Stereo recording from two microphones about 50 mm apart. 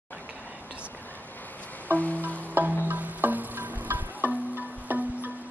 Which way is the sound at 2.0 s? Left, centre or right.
Left.